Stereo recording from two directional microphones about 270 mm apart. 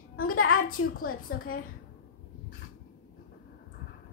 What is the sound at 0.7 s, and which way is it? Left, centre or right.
Speech, left.